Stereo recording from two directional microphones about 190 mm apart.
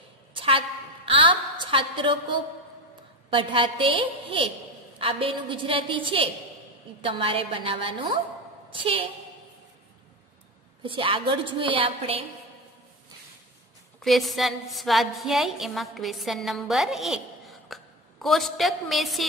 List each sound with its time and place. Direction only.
0.3 s a sound: 30° right (ahead or behind)
3.3 s a woman's voice: 25° right (ahead or behind)
10.8 s a woman's voice: 25° right (ahead or behind)
14.0 s a woman's voice: centre (ahead or behind)